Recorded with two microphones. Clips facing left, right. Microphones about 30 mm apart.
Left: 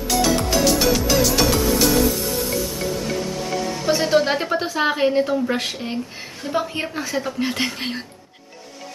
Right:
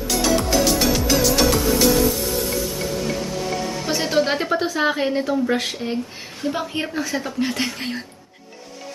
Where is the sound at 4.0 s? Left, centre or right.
Centre.